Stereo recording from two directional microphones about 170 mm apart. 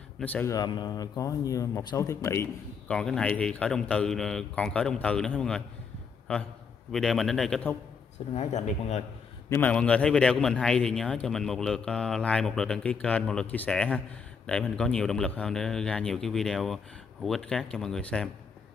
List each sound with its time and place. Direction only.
0.2 s speech: 10° left (ahead or behind)
0.6 s speech: 25° left (ahead or behind)
2.9 s a man's voice: 5° left (ahead or behind)
6.9 s a man's voice: centre (ahead or behind)
8.4 s speech: 40° left (ahead or behind)
9.5 s a man's voice: 10° left (ahead or behind)